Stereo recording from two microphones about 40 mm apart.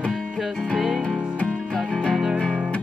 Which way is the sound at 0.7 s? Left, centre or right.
Centre.